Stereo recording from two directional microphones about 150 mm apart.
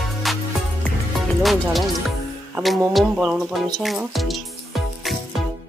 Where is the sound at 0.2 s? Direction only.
Centre (ahead or behind).